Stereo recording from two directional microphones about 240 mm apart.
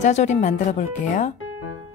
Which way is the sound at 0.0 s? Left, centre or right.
Left.